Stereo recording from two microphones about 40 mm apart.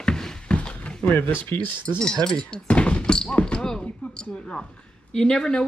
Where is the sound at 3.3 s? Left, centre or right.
Left.